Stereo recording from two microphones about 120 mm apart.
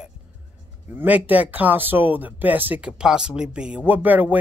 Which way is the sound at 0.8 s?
15° right (ahead or behind).